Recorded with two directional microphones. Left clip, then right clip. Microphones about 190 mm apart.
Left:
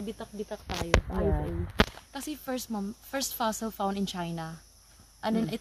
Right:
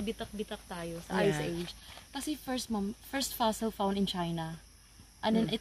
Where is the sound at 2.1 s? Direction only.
5° left (ahead or behind).